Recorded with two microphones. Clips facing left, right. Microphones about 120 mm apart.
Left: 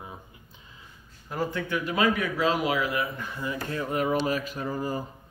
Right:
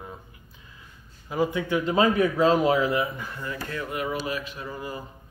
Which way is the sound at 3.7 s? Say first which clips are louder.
Left 4 dB; 35° left (ahead or behind).